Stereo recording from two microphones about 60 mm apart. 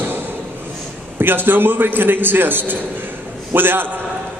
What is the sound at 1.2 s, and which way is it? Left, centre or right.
A man's voice, right.